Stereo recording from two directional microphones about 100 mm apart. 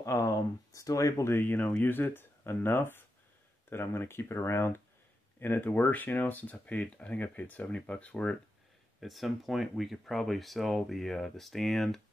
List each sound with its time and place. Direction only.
0.0 s speech: 30° left (ahead or behind)
1.4 s speech: 15° left (ahead or behind)
9.0 s speech: centre (ahead or behind)